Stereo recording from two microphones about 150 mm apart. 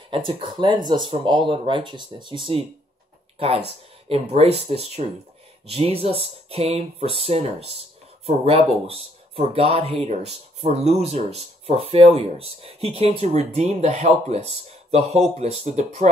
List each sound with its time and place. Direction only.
0.1 s speech: 35° right (ahead or behind); by 16.1 s 50° right (ahead or behind)